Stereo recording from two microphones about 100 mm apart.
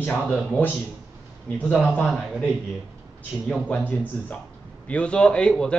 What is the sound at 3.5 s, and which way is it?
A man's voice, 15° left (ahead or behind).